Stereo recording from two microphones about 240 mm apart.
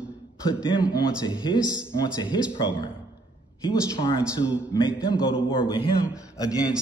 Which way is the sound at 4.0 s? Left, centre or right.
Left.